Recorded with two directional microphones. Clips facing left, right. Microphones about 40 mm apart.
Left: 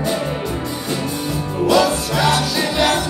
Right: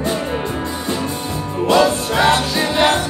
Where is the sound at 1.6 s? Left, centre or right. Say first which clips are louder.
Right 1 dB; right.